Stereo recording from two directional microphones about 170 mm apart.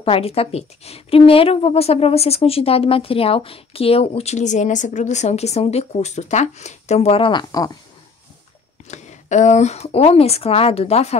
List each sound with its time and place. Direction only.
0.0 s a woman's voice: 35° left (ahead or behind)
8.8 s a woman's voice: 45° left (ahead or behind)